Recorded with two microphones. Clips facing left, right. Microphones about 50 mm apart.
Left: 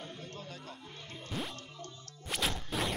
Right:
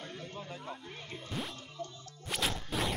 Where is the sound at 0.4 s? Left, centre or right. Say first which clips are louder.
Right 3 dB; right.